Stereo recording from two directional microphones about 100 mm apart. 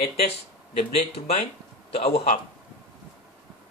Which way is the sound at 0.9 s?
75° left (ahead or behind).